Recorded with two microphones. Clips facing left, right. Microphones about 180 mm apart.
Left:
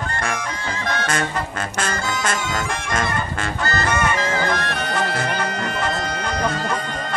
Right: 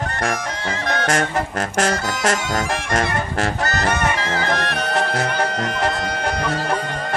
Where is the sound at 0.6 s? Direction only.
75° right (ahead or behind).